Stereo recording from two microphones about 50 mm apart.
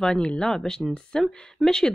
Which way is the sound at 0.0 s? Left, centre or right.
Centre.